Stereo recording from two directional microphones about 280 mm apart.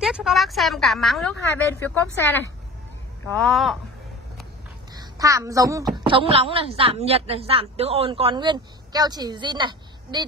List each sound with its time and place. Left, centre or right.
0.0 s a woman's voice: centre
3.3 s a woman's voice: centre
4.9 s a woman's voice: centre